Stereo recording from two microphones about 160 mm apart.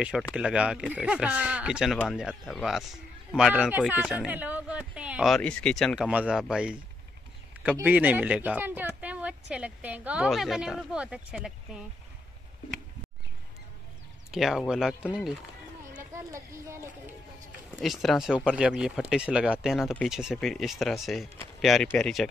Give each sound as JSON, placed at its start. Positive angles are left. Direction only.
{"t": 0.0, "sound": "speech", "side_deg": -5}
{"t": 14.3, "sound": "speech", "side_deg": 0}
{"t": 16.0, "sound": "a sound", "side_deg": -20}
{"t": 17.8, "sound": "speech", "side_deg": 0}